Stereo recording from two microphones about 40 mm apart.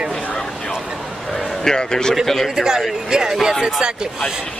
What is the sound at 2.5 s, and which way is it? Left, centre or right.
Speech, centre.